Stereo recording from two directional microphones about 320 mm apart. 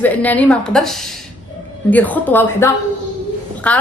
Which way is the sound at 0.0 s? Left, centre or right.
Centre.